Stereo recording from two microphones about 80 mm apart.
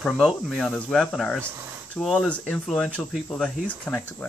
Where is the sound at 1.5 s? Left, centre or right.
Right.